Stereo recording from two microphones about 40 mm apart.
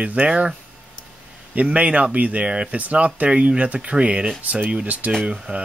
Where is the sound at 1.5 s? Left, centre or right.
Right.